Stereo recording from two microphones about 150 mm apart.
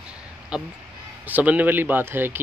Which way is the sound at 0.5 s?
5° right (ahead or behind).